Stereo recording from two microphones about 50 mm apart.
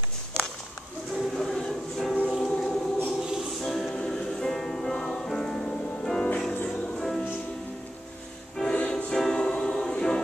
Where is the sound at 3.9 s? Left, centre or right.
Centre.